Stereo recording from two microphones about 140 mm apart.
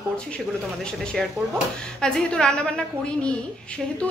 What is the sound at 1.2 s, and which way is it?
A woman's voice, centre (ahead or behind).